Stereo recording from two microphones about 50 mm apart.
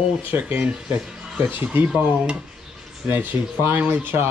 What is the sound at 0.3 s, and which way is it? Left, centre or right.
Speech, right.